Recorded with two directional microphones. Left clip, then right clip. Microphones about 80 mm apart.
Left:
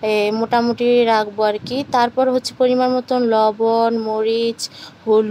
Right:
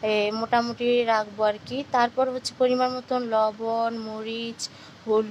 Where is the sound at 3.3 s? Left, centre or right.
Left.